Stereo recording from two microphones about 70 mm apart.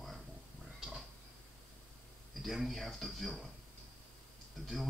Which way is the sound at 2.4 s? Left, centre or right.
Centre.